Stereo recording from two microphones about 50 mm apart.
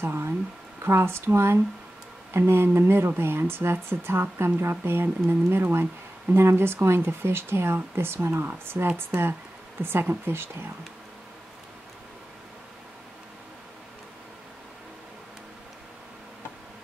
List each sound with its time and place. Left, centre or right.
0.0 s a woman's voice: right